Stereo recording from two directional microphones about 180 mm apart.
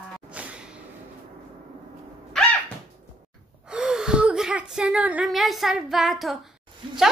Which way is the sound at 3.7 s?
5° right (ahead or behind).